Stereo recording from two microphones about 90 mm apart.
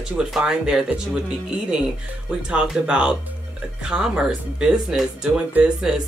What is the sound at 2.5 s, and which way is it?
Speech, 10° right (ahead or behind).